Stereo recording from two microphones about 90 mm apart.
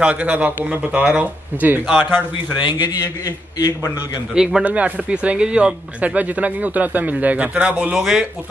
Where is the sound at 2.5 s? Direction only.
60° left (ahead or behind).